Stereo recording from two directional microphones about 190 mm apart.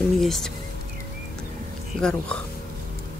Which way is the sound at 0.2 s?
Centre (ahead or behind).